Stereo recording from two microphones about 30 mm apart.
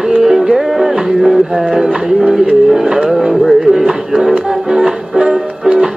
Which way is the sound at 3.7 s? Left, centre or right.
Centre.